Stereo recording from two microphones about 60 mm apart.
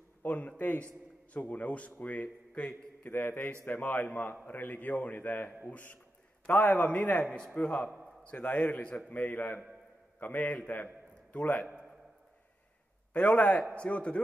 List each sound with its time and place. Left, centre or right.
0.2 s a man's voice: left
3.1 s a man's voice: left
13.1 s a man's voice: left